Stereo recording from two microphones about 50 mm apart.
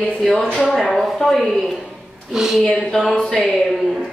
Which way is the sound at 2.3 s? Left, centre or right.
Centre.